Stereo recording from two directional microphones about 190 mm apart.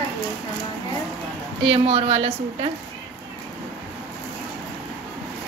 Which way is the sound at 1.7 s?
30° right (ahead or behind).